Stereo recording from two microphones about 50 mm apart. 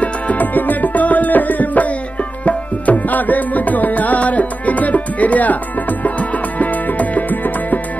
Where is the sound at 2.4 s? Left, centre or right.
Left.